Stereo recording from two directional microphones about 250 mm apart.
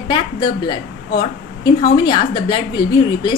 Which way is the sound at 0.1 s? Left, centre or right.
Centre.